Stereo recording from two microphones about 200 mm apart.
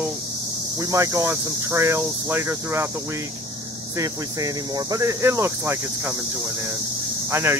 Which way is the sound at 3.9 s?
15° right (ahead or behind).